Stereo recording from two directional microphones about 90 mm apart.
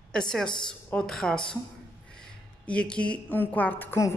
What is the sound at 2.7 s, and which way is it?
A woman's voice, 10° left (ahead or behind).